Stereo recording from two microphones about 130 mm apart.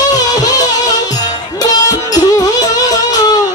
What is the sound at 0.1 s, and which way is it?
Music, 30° left (ahead or behind).